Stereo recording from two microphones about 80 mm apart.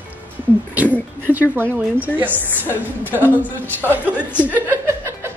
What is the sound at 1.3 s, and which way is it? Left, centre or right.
Speech, right.